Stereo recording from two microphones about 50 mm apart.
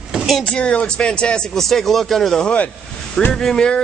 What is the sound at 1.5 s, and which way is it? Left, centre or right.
Speech, centre.